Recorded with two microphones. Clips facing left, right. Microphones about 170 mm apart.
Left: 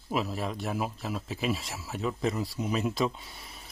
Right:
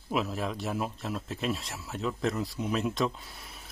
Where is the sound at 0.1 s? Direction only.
Centre (ahead or behind).